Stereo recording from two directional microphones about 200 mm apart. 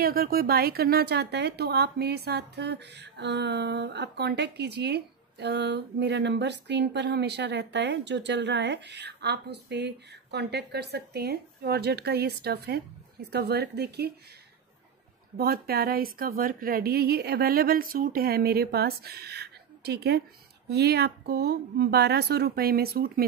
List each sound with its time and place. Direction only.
0.0 s a woman's voice: 50° right (ahead or behind)
15.3 s a woman's voice: 50° right (ahead or behind)